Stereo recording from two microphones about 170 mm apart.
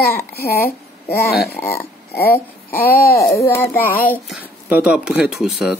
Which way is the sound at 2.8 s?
60° left (ahead or behind).